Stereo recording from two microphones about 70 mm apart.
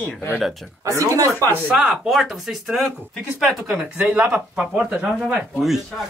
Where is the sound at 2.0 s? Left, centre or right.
Centre.